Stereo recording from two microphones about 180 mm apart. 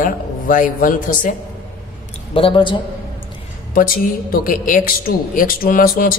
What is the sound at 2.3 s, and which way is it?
Speech, 30° left (ahead or behind).